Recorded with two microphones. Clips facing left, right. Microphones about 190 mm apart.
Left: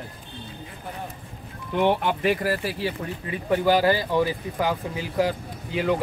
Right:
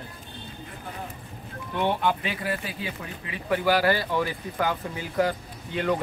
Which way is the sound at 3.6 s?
15° left (ahead or behind).